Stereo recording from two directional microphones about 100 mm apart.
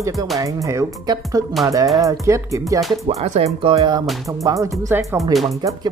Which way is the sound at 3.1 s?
90° right.